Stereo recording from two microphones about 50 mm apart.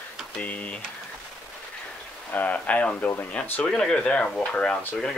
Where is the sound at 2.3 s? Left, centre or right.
Left.